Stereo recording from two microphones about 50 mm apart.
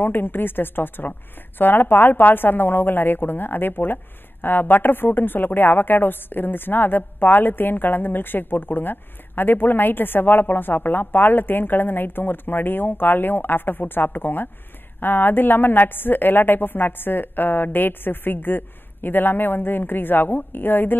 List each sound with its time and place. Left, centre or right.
0.0 s speech: left